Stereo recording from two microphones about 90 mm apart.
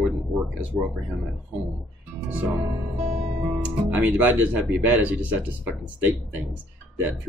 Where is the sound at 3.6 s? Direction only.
20° right (ahead or behind).